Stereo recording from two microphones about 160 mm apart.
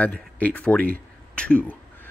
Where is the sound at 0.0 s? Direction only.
10° left (ahead or behind).